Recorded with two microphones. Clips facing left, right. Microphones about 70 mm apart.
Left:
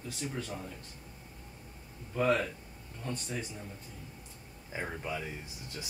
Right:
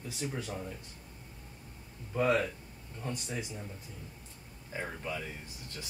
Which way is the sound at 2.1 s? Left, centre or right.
Centre.